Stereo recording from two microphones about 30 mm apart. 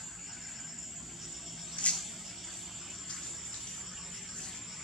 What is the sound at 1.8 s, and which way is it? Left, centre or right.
Insect, left.